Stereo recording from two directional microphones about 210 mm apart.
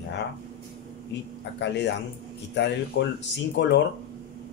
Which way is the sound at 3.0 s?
55° left (ahead or behind).